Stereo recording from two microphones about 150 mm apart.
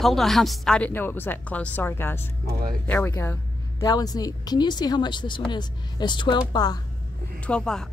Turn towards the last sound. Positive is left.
turn(degrees=5)  # may be behind; listen again after turning